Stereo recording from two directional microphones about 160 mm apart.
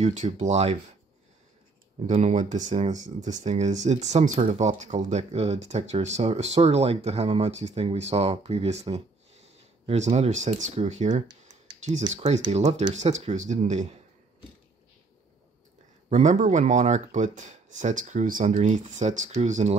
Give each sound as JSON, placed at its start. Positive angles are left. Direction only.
{"t": 0.0, "sound": "speech", "side_deg": -45}
{"t": 2.0, "sound": "speech", "side_deg": -45}
{"t": 16.1, "sound": "speech", "side_deg": -50}